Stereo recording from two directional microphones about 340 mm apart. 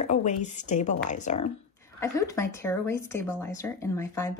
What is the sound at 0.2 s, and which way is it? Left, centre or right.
A woman's voice, left.